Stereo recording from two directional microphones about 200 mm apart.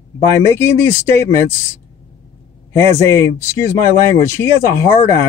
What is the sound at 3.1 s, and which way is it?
Speech, 15° left (ahead or behind).